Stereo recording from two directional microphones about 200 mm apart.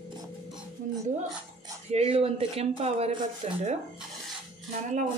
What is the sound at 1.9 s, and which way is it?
Speech, 30° right (ahead or behind).